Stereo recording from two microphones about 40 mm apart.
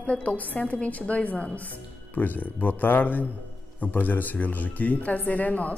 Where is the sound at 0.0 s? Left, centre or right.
Left.